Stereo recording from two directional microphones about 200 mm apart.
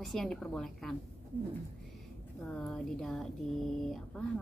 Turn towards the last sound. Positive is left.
turn(degrees=0)  # may be behind; listen again after turning